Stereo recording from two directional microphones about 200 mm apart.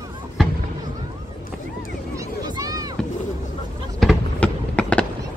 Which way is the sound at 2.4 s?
20° right (ahead or behind).